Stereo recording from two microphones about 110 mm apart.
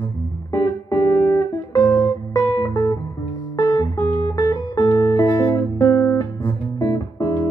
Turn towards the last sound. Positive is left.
turn(degrees=30)  # may be behind; listen again after turning